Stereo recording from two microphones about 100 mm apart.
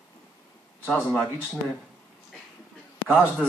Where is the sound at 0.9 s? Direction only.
Centre (ahead or behind).